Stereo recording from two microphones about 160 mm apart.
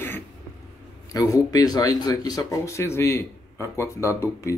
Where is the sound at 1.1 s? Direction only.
20° left (ahead or behind).